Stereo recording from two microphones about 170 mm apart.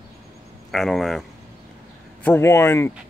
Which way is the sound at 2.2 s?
15° left (ahead or behind).